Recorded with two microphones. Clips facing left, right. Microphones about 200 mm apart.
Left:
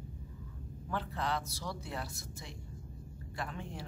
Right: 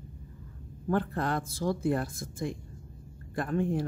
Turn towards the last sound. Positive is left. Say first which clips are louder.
# right 13 dB
turn(degrees=-50)  # may be behind; listen again after turning